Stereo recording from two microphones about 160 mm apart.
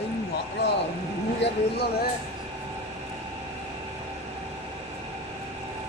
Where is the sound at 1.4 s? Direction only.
90° left.